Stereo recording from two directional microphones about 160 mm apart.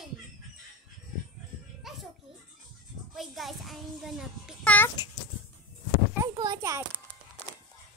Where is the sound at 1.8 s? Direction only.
Centre (ahead or behind).